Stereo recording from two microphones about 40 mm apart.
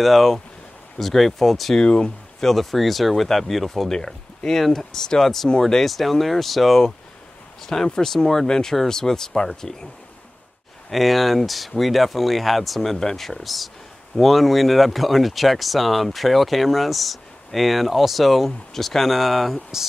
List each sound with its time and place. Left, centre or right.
0.0 s speech: centre
1.8 s speech: left
2.4 s speech: centre
3.9 s speech: centre
10.9 s speech: centre